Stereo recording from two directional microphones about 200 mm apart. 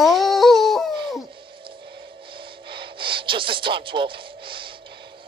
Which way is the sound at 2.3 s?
25° right (ahead or behind).